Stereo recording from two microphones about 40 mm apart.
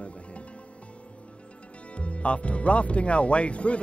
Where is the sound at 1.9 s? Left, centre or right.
Left.